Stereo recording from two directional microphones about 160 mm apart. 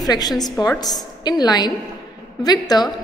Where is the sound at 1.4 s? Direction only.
25° left (ahead or behind).